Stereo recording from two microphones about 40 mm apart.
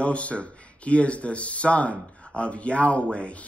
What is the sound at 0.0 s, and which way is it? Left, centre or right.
Speech, left.